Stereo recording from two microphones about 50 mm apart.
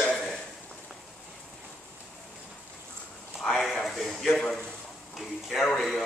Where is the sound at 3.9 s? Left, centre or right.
Centre.